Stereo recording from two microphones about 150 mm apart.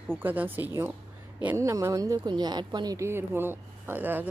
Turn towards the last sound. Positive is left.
turn(degrees=-10)  # may be behind; listen again after turning